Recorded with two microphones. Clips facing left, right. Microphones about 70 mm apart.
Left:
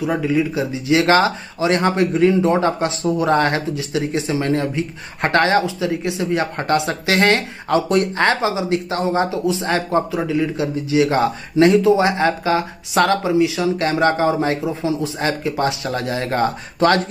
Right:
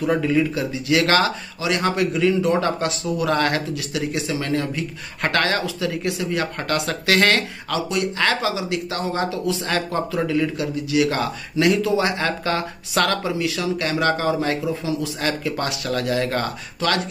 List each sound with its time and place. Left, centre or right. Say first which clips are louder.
0.0 s speech: left 1 dB; centre
0.6 s speech: left 3 dB; left
7.7 s speech: left 6 dB; left